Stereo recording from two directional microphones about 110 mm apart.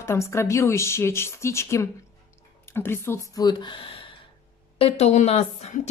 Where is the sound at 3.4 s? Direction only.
45° left (ahead or behind).